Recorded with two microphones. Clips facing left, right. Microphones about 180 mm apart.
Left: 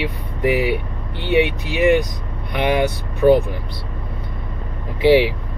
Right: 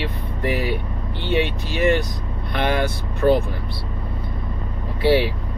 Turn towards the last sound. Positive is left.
turn(degrees=15)  # may be behind; listen again after turning